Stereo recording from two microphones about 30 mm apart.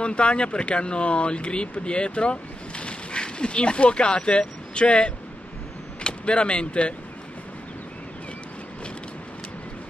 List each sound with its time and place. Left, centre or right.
0.0 s speech: left